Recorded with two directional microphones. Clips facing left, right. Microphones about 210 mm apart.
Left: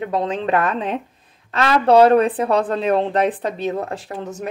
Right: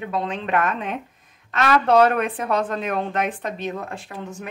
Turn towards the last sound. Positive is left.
turn(degrees=40)  # may be behind; listen again after turning